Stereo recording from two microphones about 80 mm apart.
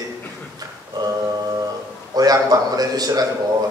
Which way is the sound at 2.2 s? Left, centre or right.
Right.